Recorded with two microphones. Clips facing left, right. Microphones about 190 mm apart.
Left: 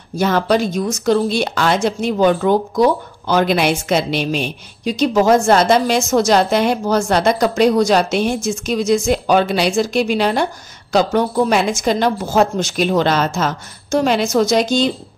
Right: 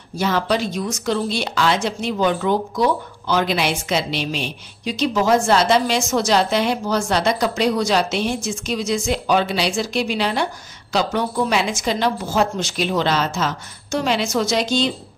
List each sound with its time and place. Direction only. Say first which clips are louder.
0.2 s speech: left 4 dB; 50° left (ahead or behind)